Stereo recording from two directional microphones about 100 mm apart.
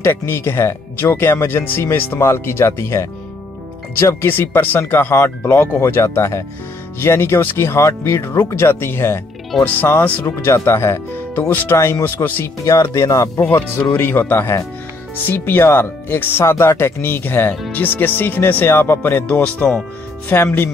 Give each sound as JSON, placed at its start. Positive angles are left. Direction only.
{"t": 0.0, "sound": "speech", "side_deg": 25}
{"t": 12.6, "sound": "speech", "side_deg": 30}
{"t": 13.4, "sound": "speech", "side_deg": 20}